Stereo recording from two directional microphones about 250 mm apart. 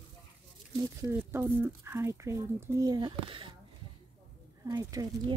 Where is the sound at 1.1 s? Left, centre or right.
Centre.